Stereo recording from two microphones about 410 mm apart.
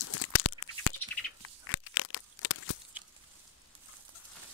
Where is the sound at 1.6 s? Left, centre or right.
Left.